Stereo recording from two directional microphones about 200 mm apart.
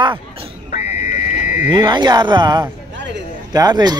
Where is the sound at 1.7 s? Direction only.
20° right (ahead or behind).